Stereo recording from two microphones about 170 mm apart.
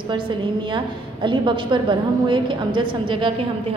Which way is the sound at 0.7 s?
30° right (ahead or behind).